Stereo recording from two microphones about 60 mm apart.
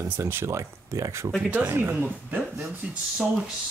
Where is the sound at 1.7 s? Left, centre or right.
Right.